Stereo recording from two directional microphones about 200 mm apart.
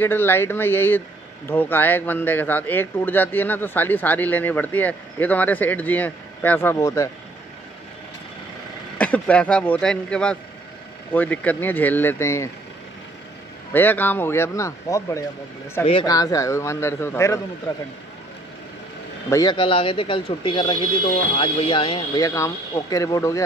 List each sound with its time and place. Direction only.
0.0 s a man's voice: 10° left (ahead or behind)
8.9 s a man's voice: 5° left (ahead or behind)
13.7 s a man's voice: 10° left (ahead or behind)
19.3 s speech: 20° left (ahead or behind)